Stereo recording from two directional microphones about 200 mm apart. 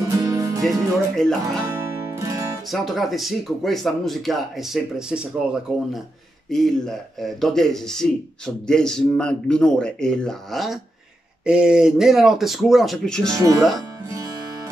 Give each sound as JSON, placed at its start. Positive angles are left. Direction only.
{"t": 0.1, "sound": "music", "side_deg": -15}
{"t": 0.6, "sound": "a man's voice", "side_deg": 0}
{"t": 2.0, "sound": "music", "side_deg": -15}
{"t": 2.7, "sound": "a man's voice", "side_deg": 0}
{"t": 13.3, "sound": "speech", "side_deg": -20}
{"t": 13.7, "sound": "music", "side_deg": -20}